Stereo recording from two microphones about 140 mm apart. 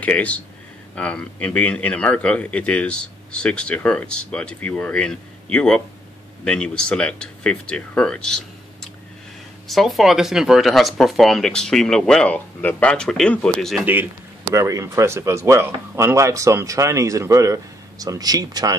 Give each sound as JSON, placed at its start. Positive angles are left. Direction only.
{"t": 0.0, "sound": "a man's voice", "side_deg": 10}
{"t": 14.4, "sound": "a man's voice", "side_deg": -20}